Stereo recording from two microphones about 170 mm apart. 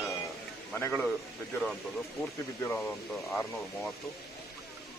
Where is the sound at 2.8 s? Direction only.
15° left (ahead or behind).